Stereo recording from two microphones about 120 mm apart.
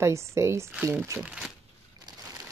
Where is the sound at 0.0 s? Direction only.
25° right (ahead or behind).